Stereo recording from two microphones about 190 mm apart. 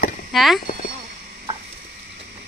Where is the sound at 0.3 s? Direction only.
Centre (ahead or behind).